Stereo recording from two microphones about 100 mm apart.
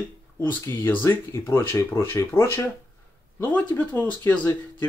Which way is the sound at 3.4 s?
15° left (ahead or behind).